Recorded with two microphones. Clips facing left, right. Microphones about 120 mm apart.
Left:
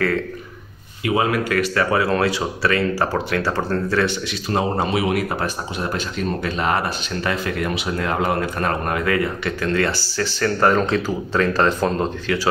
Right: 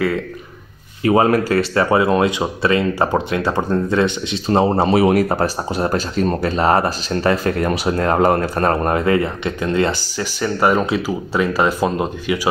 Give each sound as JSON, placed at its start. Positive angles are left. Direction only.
{"t": 1.0, "sound": "speech", "side_deg": -40}